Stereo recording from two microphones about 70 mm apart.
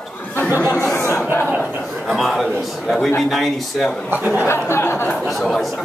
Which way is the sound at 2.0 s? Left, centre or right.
Centre.